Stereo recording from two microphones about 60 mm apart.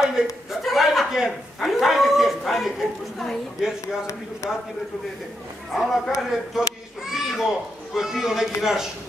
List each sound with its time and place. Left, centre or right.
0.0 s a man's voice: centre
0.6 s a sound: centre
4.4 s a man's voice: left
5.7 s a man's voice: centre
6.1 s a man's voice: centre